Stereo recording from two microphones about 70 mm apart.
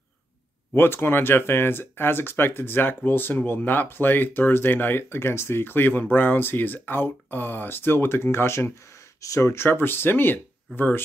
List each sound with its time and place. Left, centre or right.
0.7 s speech: left